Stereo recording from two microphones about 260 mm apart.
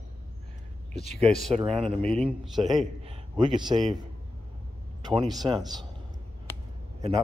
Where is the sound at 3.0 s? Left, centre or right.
Centre.